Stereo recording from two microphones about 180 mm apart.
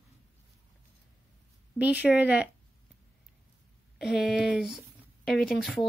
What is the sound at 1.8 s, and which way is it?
Speech, 10° right (ahead or behind).